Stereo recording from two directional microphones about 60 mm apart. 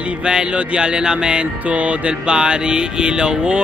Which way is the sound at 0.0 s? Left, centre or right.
Centre.